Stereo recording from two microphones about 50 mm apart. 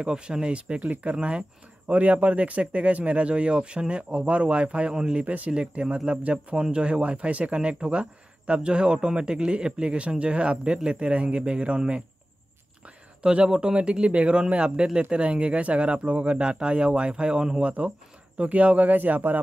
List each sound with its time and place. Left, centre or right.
0.0 s speech: centre
5.2 s speech: right